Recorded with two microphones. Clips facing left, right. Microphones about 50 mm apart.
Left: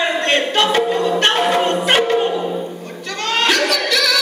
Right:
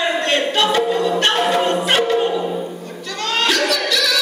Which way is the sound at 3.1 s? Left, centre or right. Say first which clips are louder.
Left 2 dB; left.